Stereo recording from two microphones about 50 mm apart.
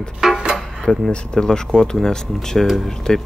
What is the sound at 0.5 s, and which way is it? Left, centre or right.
Speech, centre.